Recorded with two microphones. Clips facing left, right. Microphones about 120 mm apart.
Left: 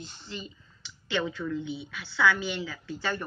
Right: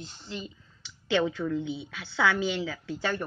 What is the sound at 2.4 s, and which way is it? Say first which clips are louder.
Speech: right 4 dB; 85° right.